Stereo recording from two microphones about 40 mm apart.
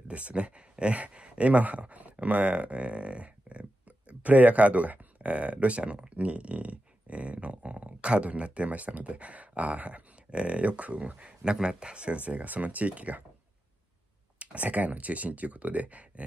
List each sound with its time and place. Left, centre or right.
0.1 s speech: right
14.4 s speech: right